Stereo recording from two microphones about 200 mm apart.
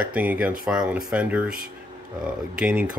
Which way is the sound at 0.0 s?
5° right (ahead or behind).